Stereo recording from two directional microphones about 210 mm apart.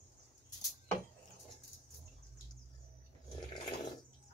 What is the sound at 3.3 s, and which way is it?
Dog, 20° left (ahead or behind).